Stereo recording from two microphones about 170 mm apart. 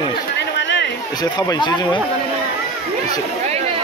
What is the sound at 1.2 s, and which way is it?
Speech, 25° left (ahead or behind).